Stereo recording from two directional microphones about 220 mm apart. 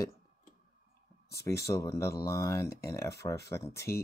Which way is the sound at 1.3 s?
15° left (ahead or behind).